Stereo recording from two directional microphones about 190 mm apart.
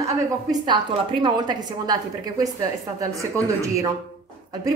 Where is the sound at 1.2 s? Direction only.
20° right (ahead or behind).